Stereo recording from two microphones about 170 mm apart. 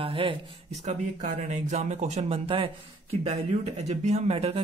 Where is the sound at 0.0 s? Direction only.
30° right (ahead or behind).